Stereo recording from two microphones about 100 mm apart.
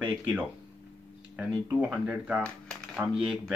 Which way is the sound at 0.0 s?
15° right (ahead or behind).